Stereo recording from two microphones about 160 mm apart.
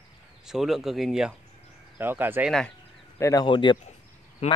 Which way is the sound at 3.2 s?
20° left (ahead or behind).